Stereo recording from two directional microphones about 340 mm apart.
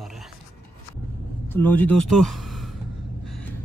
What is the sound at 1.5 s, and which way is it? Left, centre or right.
Speech, centre.